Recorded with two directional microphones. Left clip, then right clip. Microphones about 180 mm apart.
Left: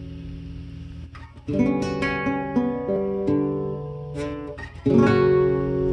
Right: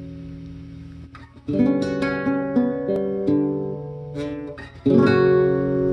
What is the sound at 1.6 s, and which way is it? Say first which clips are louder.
Music: right 2 dB; 20° right (ahead or behind).